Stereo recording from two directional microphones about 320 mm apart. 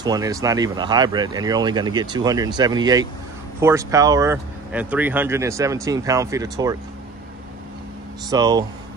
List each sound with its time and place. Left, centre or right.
0.0 s speech: centre
8.3 s speech: centre